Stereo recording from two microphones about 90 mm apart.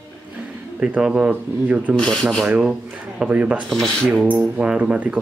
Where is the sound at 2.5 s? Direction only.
15° right (ahead or behind).